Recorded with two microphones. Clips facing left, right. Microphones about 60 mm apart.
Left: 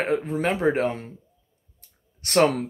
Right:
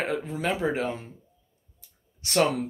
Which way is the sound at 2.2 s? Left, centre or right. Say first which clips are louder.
Left 4 dB; left.